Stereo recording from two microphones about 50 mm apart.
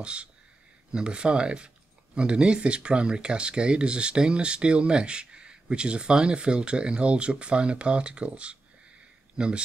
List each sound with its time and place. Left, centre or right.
0.0 s speech: right